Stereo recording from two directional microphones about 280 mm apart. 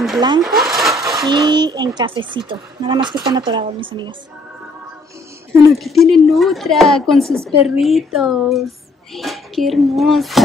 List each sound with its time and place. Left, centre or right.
0.4 s speech: centre
1.2 s speech: centre
5.7 s speech: centre